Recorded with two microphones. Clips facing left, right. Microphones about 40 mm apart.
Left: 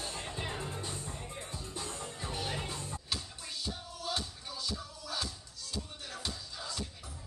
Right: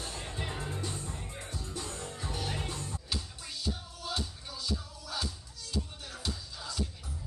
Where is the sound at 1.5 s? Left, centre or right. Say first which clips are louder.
Right 3 dB; left.